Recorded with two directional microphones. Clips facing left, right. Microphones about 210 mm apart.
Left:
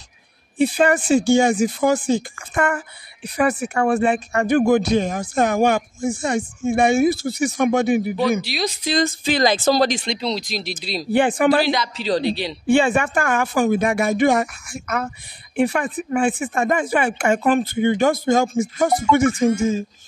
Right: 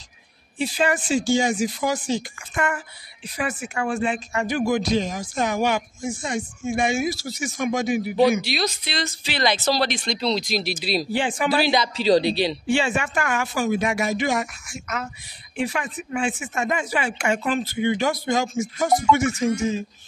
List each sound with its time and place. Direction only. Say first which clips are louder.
0.6 s speech: left 6 dB; 55° left (ahead or behind)
8.8 s speech: left 9 dB; 45° left (ahead or behind)
10.3 s speech: right 2 dB; 5° right (ahead or behind)
11.1 s speech: left 11 dB; 55° left (ahead or behind)
11.7 s speech: right 3 dB; 15° right (ahead or behind)
12.6 s speech: left 6 dB; 55° left (ahead or behind)